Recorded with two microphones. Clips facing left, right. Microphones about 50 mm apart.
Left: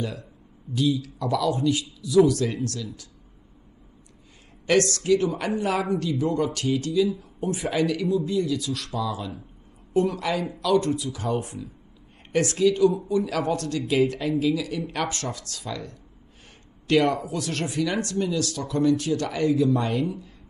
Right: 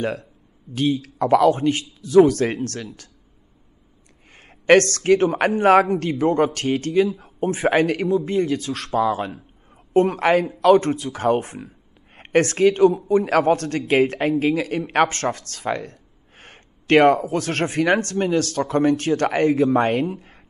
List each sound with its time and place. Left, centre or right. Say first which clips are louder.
0.0 s speech: right 6 dB; right
4.6 s speech: right 6 dB; right